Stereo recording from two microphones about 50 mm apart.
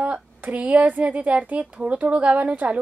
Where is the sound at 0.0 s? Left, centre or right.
Right.